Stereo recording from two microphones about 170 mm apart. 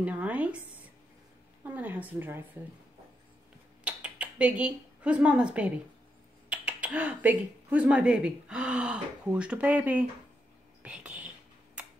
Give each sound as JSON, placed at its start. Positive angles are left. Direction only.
{"t": 0.0, "sound": "speech", "side_deg": -10}
{"t": 1.6, "sound": "speech", "side_deg": -10}
{"t": 3.8, "sound": "a sound", "side_deg": -5}
{"t": 6.5, "sound": "speech", "side_deg": -5}